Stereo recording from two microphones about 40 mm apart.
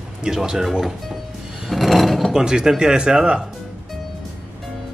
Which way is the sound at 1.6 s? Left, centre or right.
Centre.